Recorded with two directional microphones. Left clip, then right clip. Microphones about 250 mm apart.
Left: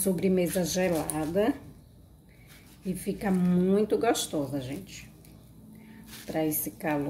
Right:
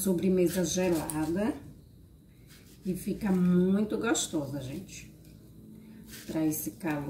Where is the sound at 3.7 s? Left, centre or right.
Left.